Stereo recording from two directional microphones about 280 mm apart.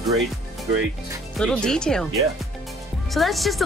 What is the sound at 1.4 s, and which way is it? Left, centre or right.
Speech, centre.